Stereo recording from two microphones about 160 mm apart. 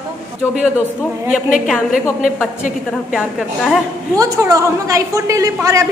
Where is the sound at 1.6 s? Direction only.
Centre (ahead or behind).